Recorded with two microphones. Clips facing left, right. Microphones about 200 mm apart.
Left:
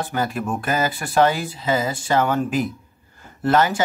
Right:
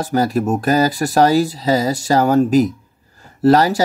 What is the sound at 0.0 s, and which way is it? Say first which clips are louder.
Speech: right 7 dB; 40° right (ahead or behind).